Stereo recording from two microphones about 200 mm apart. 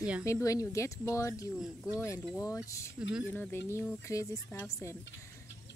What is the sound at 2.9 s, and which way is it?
Speech, 5° right (ahead or behind).